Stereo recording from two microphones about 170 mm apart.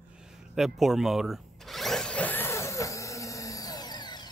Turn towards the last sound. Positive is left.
turn(degrees=25)  # may be behind; listen again after turning